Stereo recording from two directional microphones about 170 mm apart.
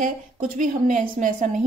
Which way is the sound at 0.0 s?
50° right (ahead or behind).